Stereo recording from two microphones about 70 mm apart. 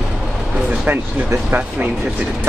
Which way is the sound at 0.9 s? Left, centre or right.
Right.